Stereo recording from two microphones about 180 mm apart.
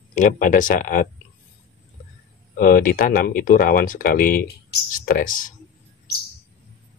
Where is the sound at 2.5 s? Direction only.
50° left (ahead or behind).